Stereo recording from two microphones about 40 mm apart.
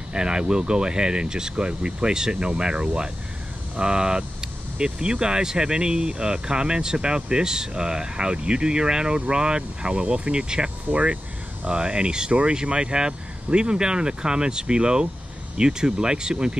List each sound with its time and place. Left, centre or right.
0.1 s speech: right